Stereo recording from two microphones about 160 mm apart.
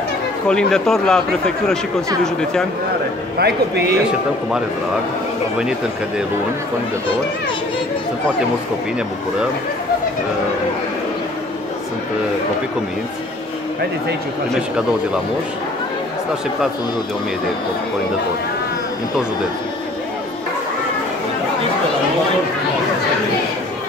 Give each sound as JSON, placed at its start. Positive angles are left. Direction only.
{"t": 0.5, "sound": "speech", "side_deg": 5}
{"t": 3.3, "sound": "a man's voice", "side_deg": -85}
{"t": 5.6, "sound": "speech", "side_deg": -5}